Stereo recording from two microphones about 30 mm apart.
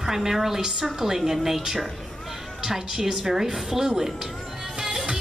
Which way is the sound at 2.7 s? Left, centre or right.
Centre.